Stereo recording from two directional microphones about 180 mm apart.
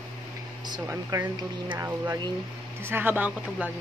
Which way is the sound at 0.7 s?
15° right (ahead or behind).